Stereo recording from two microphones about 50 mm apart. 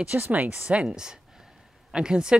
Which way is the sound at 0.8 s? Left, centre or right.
Centre.